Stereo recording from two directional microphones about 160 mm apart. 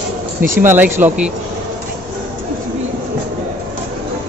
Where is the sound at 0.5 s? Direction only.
55° right (ahead or behind).